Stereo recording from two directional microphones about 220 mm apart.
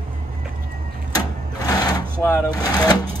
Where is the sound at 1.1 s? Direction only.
15° left (ahead or behind).